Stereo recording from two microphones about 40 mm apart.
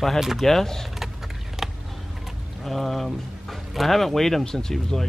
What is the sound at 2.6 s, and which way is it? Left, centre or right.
Speech, centre.